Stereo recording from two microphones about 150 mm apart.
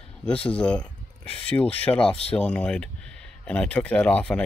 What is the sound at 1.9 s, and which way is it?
Speech, 5° left (ahead or behind).